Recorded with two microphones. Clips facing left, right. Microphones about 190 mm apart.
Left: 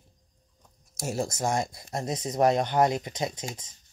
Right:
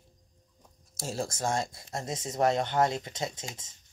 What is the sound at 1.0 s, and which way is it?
Speech, 15° left (ahead or behind).